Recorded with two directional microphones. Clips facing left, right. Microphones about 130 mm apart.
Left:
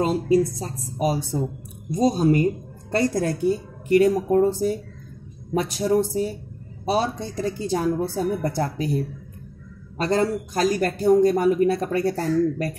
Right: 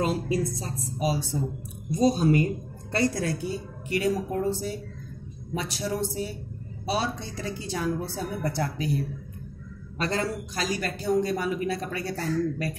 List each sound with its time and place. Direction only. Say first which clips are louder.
0.0 s a woman's voice: left 7 dB; 40° left (ahead or behind)